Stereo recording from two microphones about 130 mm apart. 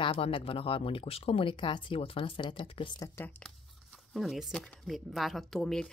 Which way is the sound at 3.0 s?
20° left (ahead or behind).